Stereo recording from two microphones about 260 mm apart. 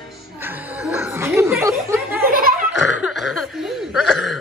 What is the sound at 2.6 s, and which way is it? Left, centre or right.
Throat clearing, centre.